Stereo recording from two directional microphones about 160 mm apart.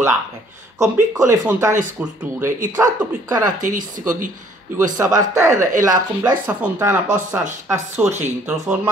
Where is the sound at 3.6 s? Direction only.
55° right (ahead or behind).